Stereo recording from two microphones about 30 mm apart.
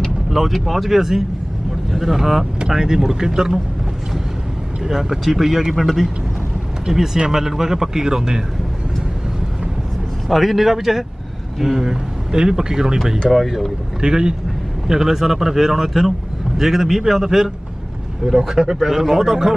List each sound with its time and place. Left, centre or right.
0.3 s speech: centre
4.8 s speech: centre
10.2 s a man's voice: centre; by 13.0 s right
13.2 s speech: centre
14.0 s a man's voice: right
14.9 s speech: centre